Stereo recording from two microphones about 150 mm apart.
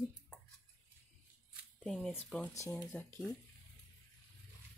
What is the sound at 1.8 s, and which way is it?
Speech, centre (ahead or behind).